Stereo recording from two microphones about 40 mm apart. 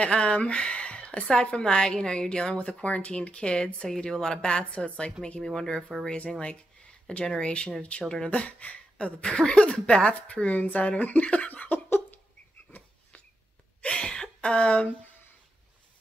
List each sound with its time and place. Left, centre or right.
0.0 s speech: left
2.5 s speech: left
5.4 s speech: centre
6.0 s speech: left
7.3 s speech: left
9.2 s speech: left
13.7 s gasp: left